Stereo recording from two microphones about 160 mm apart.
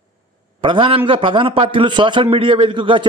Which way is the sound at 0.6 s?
30° right (ahead or behind).